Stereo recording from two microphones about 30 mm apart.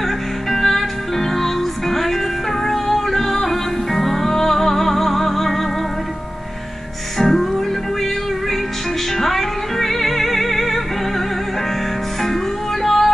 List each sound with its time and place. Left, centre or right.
0.5 s music: centre
7.2 s music: centre
9.2 s music: centre
12.8 s music: centre